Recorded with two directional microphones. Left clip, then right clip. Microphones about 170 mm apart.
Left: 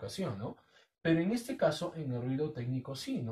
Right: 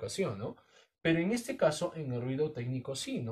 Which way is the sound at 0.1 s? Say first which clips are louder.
Right 4 dB; 25° right (ahead or behind).